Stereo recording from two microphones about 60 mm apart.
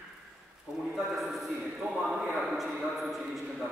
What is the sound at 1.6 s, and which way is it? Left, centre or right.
A man's voice, centre.